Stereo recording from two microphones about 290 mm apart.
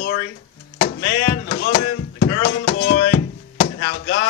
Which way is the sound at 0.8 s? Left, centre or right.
Left.